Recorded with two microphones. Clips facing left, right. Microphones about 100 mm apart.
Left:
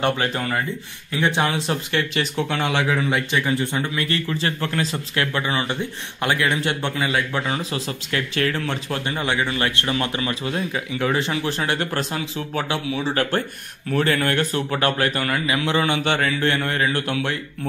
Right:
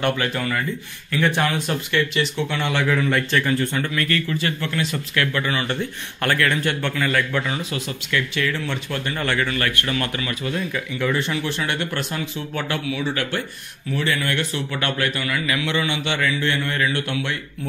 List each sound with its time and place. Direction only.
0.0 s a man's voice: 30° left (ahead or behind)
1.1 s a man's voice: 20° left (ahead or behind); by 2.7 s 40° left (ahead or behind)
2.7 s a man's voice: 20° left (ahead or behind)
4.3 s a man's voice: 30° left (ahead or behind)
7.4 s a man's voice: 35° left (ahead or behind)
9.0 s a man's voice: 20° left (ahead or behind); by 17.4 s 35° left (ahead or behind)